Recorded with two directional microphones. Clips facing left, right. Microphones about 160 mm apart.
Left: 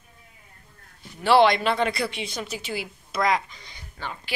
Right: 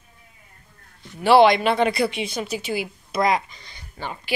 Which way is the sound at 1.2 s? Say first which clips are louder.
Right 4 dB; 15° right (ahead or behind).